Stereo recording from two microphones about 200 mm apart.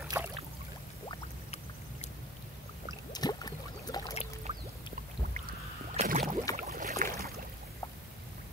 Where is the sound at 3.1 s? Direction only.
20° left (ahead or behind).